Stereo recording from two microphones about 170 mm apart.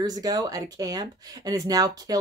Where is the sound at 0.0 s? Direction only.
20° right (ahead or behind).